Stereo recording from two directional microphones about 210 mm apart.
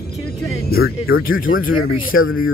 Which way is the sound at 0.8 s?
75° left (ahead or behind).